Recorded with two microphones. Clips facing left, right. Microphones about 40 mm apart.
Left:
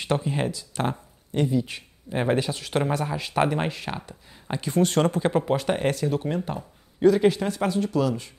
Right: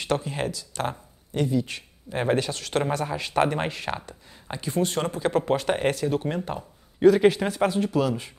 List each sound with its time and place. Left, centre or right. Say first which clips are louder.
0.0 s speech: left 1 dB; left
2.8 s speech: left 1 dB; centre
4.6 s speech: left 4 dB; left
5.4 s a man's voice: even; centre